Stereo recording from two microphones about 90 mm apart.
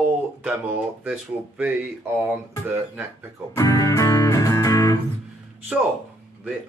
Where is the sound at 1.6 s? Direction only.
20° right (ahead or behind).